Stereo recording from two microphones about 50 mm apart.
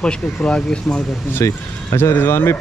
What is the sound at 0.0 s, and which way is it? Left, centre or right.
Speech, centre.